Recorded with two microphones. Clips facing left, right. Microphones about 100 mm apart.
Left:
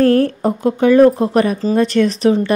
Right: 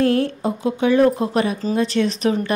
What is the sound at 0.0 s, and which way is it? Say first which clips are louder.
Speech: left 5 dB; 45° left (ahead or behind).